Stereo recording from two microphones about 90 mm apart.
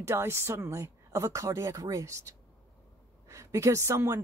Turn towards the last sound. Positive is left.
turn(degrees=-30)  # may be behind; listen again after turning